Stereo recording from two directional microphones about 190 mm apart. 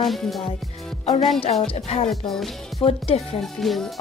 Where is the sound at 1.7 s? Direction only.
30° left (ahead or behind).